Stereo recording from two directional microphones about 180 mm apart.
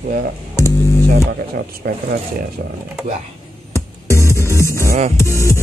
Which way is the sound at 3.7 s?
15° left (ahead or behind).